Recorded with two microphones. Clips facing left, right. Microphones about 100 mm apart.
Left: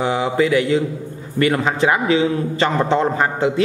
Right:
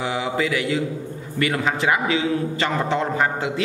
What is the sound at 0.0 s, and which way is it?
A man's voice, 35° left (ahead or behind).